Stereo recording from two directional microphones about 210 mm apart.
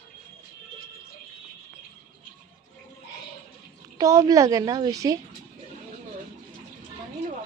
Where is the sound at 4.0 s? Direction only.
15° right (ahead or behind).